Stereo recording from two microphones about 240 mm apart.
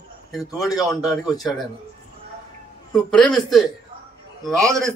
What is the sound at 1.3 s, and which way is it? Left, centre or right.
Speech, centre.